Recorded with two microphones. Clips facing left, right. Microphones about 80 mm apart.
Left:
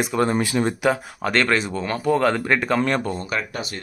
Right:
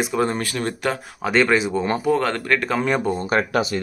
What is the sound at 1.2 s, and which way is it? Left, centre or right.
Speech, centre.